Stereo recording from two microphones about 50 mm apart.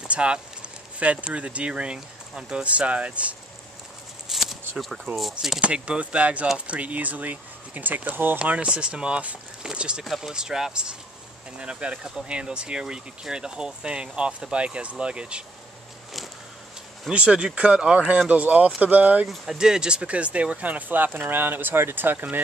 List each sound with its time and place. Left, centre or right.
0.1 s speech: right
4.3 s a sound: centre
5.6 s speech: right
8.4 s speech: right
10.0 s speech: centre; by 15.4 s right
17.1 s speech: centre
19.2 s speech: centre
19.6 s speech: centre; by 22.2 s right